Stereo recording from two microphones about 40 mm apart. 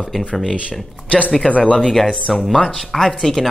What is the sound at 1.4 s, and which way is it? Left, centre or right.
Speech, left.